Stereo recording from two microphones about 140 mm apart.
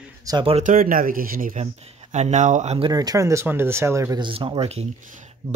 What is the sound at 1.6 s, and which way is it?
Speech, 55° right (ahead or behind).